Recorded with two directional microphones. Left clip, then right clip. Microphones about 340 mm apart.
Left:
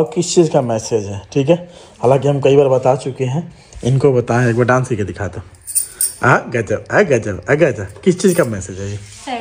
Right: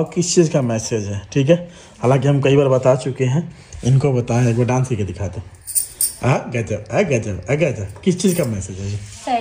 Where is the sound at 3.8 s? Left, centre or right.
Centre.